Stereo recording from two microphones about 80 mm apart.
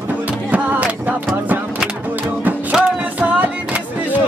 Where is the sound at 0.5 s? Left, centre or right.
Right.